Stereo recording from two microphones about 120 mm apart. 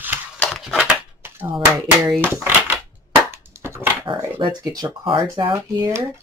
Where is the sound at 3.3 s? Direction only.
20° right (ahead or behind).